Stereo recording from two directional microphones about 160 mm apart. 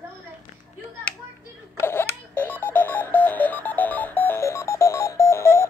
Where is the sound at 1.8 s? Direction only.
15° left (ahead or behind).